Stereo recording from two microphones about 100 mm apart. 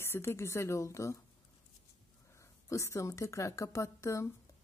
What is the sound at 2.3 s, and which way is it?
A woman's voice, 30° left (ahead or behind).